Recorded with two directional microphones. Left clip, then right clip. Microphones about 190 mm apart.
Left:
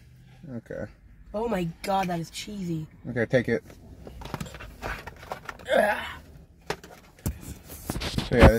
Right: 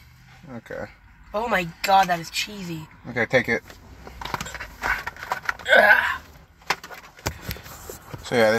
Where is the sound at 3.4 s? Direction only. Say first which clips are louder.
Right 4 dB; 25° left (ahead or behind).